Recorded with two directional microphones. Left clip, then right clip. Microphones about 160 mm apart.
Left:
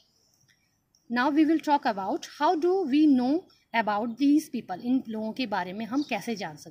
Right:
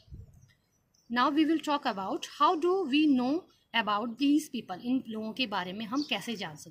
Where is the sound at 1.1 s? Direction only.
35° left (ahead or behind).